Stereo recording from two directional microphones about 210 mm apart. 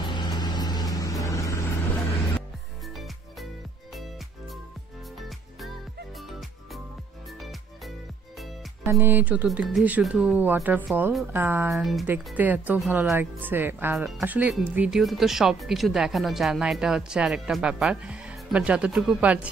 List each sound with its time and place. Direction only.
0.0 s vehicle: 20° left (ahead or behind)
8.8 s speech: 10° right (ahead or behind)